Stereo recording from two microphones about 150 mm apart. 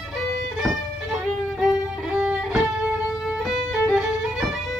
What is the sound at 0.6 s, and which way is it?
Music, 5° right (ahead or behind).